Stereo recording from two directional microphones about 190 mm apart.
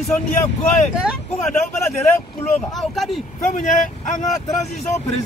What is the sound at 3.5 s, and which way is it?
Speech, 40° left (ahead or behind).